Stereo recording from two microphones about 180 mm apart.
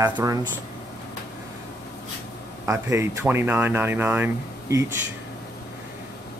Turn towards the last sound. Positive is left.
turn(degrees=-15)  # may be behind; listen again after turning